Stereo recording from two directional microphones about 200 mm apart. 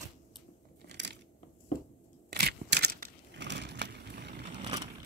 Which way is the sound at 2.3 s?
55° right (ahead or behind).